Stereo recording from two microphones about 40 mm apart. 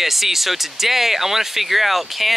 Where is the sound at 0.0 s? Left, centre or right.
Centre.